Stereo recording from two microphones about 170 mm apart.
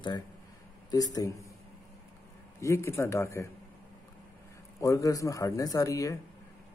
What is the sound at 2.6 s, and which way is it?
Speech, 15° left (ahead or behind).